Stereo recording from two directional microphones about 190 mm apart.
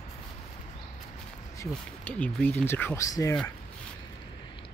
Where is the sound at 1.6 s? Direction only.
10° left (ahead or behind).